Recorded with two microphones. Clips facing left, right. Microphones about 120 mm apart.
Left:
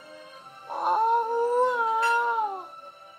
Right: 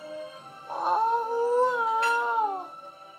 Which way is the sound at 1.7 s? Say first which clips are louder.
Left 1 dB; 15° left (ahead or behind).